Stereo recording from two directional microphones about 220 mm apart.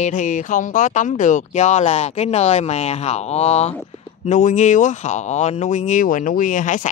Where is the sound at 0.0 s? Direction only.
35° left (ahead or behind).